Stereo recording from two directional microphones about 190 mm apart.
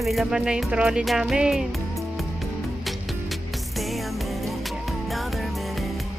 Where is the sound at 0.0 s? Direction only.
Centre (ahead or behind).